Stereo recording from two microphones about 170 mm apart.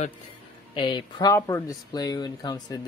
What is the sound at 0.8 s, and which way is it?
Speech, 25° left (ahead or behind).